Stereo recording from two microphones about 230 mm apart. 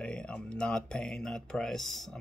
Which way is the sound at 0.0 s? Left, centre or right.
Centre.